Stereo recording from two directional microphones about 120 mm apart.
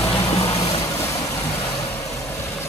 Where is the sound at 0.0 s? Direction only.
30° left (ahead or behind).